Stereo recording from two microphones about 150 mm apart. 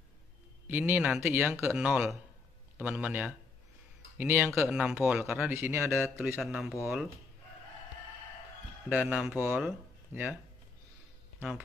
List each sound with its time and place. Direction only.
0.7 s a man's voice: 15° right (ahead or behind)
1.9 s a man's voice: centre (ahead or behind)
5.5 s a man's voice: 20° right (ahead or behind)
6.4 s speech: centre (ahead or behind)
8.8 s a man's voice: 10° right (ahead or behind)
11.3 s speech: 15° right (ahead or behind)